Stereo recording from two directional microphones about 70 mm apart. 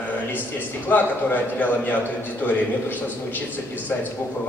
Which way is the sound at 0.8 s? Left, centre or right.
Left.